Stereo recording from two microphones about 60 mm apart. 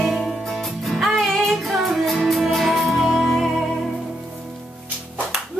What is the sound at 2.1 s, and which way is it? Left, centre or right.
Music, centre.